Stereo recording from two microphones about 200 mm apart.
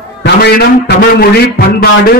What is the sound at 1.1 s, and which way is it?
Speech, 50° left (ahead or behind).